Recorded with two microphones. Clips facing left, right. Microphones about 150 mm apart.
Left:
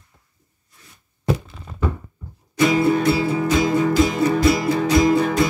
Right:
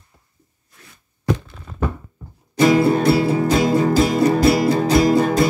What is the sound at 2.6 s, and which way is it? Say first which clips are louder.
Music: right 2 dB; 35° right (ahead or behind).